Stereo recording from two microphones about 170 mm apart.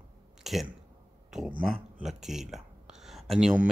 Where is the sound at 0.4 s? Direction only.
Centre (ahead or behind).